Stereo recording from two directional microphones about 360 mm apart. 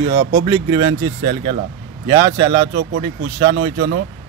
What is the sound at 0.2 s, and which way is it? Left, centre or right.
Speech, right.